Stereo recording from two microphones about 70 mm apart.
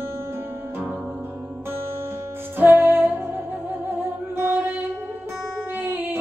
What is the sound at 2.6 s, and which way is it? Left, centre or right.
Music, right.